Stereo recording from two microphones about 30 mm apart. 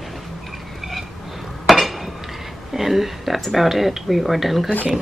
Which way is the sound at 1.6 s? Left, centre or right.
Centre.